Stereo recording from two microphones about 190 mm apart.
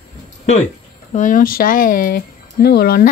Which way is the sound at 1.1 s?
45° left (ahead or behind).